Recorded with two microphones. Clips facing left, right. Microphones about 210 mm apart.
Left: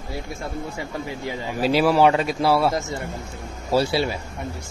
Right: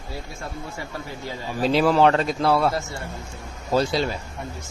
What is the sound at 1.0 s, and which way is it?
Speech, 15° left (ahead or behind).